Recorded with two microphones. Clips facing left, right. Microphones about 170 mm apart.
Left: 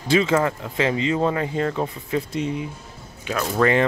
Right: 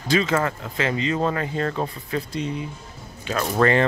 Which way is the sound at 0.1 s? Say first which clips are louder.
Left 2 dB; 20° left (ahead or behind).